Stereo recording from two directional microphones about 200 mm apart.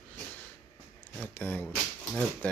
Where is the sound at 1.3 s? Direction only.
10° left (ahead or behind).